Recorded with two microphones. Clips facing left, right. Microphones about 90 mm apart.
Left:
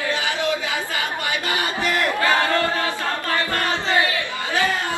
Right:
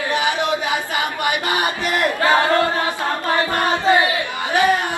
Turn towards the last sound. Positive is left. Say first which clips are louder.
# right 5 dB
turn(degrees=-20)  # may be behind; listen again after turning